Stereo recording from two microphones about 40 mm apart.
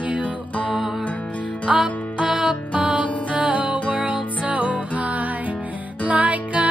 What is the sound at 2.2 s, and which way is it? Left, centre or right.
Music, right.